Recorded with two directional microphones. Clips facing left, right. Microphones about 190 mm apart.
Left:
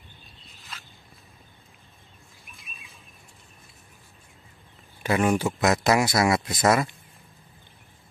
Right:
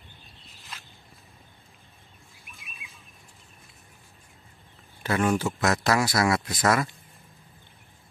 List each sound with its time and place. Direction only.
5.0 s speech: 15° left (ahead or behind)